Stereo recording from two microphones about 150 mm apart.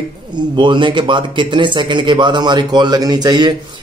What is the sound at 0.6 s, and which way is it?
Speech, 30° right (ahead or behind).